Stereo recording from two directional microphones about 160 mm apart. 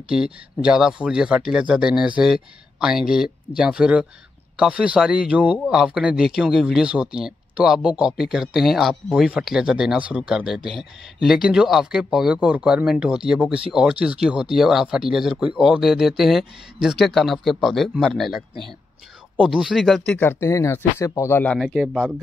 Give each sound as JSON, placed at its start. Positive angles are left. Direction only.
{"t": 0.1, "sound": "speech", "side_deg": -5}
{"t": 20.2, "sound": "speech", "side_deg": 15}